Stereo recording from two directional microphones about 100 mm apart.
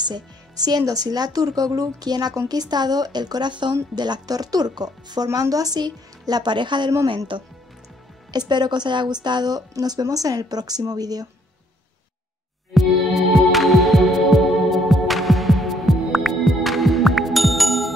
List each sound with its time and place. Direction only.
0.7 s speech: 40° right (ahead or behind)
8.3 s speech: 45° right (ahead or behind)
12.7 s music: centre (ahead or behind)